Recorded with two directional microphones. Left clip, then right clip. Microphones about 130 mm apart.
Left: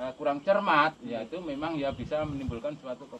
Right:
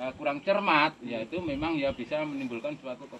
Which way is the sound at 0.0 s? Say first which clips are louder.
Left 1 dB; 25° left (ahead or behind).